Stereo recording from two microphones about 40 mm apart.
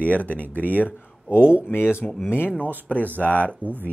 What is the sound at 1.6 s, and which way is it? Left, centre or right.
Speech, left.